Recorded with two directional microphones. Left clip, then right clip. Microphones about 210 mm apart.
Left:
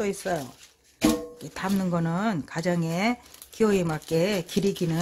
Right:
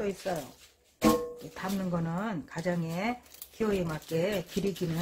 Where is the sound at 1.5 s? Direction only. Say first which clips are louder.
Left 8 dB; 40° left (ahead or behind).